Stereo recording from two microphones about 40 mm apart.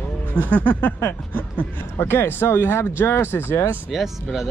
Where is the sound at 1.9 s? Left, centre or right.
Left.